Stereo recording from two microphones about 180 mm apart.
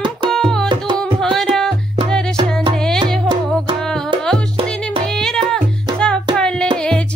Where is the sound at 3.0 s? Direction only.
25° right (ahead or behind).